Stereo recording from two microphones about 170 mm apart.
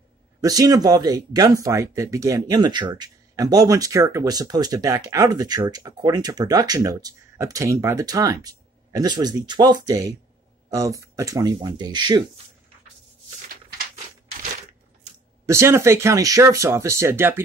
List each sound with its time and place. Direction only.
0.4 s speech: 20° right (ahead or behind)
15.4 s speech: 15° right (ahead or behind)